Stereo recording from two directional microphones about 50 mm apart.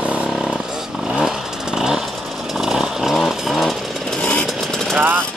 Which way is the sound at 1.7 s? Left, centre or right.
Centre.